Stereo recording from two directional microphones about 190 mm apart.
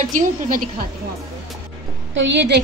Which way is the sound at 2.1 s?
70° right (ahead or behind).